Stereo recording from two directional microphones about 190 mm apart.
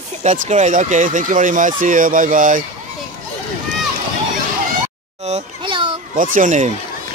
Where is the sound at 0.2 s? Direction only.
35° right (ahead or behind).